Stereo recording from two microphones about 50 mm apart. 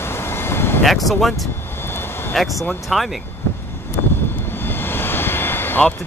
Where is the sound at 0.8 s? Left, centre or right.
Centre.